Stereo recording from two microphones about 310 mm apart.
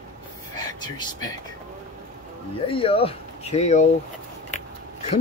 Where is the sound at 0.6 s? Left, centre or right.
Centre.